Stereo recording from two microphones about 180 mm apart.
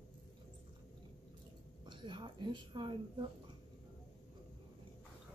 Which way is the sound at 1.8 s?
25° right (ahead or behind).